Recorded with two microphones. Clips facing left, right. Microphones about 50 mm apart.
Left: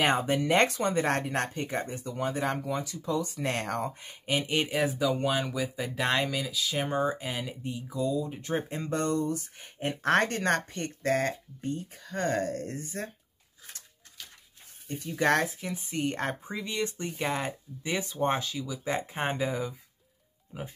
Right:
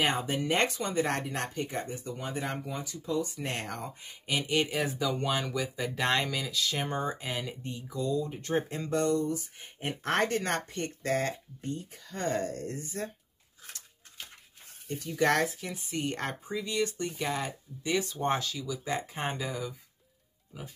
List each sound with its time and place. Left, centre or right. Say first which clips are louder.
0.0 s speech: left 3 dB; left
4.6 s speech: left 1 dB; centre
8.9 s speech: right 1 dB; left
15.1 s speech: left 1 dB; left
20.5 s speech: left 5 dB; left